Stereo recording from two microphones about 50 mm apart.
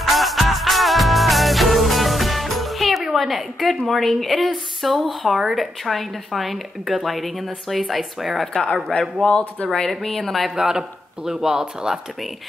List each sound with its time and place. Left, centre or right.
0.0 s music: centre
6.9 s speech: centre
8.9 s speech: centre
10.5 s speech: centre